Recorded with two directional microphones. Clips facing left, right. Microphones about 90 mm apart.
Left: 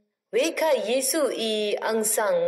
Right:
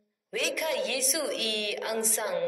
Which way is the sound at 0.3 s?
50° left (ahead or behind).